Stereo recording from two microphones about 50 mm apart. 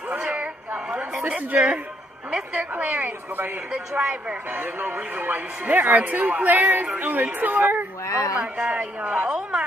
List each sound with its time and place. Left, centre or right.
0.1 s a sound: right
0.9 s a woman's voice: right
3.7 s a woman's voice: right
4.6 s speech: right
8.1 s speech: left
8.4 s a woman's voice: right
9.0 s speech: right